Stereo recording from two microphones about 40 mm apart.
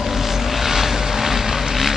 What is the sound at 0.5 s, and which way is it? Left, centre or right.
Vehicle, centre.